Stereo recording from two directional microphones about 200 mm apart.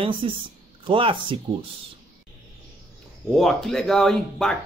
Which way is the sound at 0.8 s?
25° right (ahead or behind).